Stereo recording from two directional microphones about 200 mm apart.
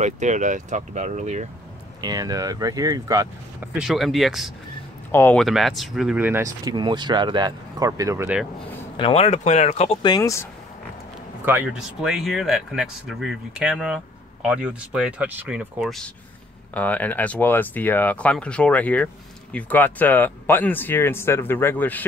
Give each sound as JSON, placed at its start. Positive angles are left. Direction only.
{"t": 0.0, "sound": "speech", "side_deg": -35}
{"t": 2.0, "sound": "speech", "side_deg": -20}
{"t": 3.7, "sound": "speech", "side_deg": 0}
{"t": 5.1, "sound": "speech", "side_deg": 10}
{"t": 5.4, "sound": "speech", "side_deg": 0}
{"t": 8.9, "sound": "speech", "side_deg": 25}
{"t": 10.0, "sound": "speech", "side_deg": 20}
{"t": 11.4, "sound": "speech", "side_deg": -5}
{"t": 16.7, "sound": "speech", "side_deg": 10}